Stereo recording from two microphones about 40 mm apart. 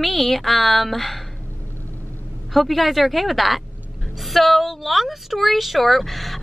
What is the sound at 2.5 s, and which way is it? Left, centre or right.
Speech, centre.